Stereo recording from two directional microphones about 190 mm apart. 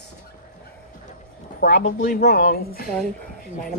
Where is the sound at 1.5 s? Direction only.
45° left (ahead or behind).